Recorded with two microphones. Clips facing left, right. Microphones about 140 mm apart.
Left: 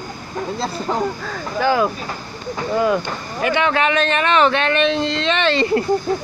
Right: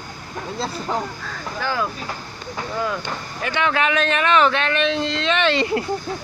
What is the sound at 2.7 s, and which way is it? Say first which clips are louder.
Speech: left 8 dB; 60° left (ahead or behind).